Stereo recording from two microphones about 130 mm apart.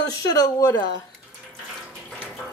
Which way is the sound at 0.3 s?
30° left (ahead or behind).